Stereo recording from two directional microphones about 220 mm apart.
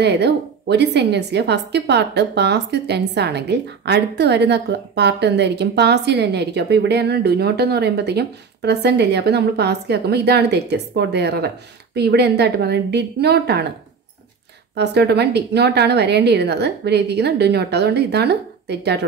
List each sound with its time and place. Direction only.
0.0 s a woman's voice: 50° right (ahead or behind)
14.8 s a woman's voice: 50° right (ahead or behind)